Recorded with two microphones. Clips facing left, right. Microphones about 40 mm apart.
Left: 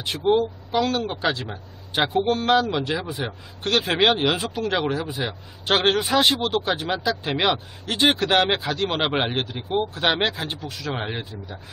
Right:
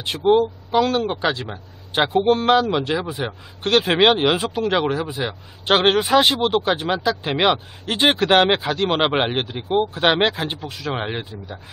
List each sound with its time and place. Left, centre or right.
0.0 s speech: centre
2.1 s speech: right
2.7 s speech: centre